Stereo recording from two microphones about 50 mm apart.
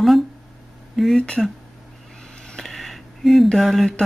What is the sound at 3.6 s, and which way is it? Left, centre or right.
Speech, centre.